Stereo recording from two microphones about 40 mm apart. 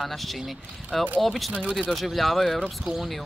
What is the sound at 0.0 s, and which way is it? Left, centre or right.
Speech, centre.